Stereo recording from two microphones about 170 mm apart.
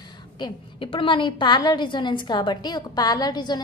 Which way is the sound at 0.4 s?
30° left (ahead or behind).